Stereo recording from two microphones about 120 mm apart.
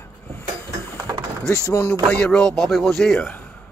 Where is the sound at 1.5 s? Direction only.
25° left (ahead or behind).